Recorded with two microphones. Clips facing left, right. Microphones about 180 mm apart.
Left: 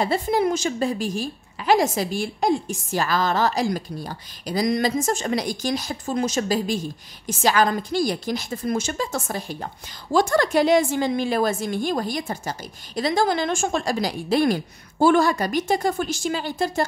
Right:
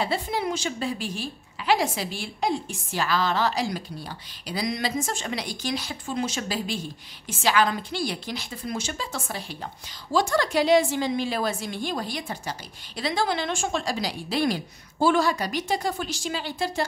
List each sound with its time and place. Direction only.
0.0 s a woman's voice: 45° left (ahead or behind)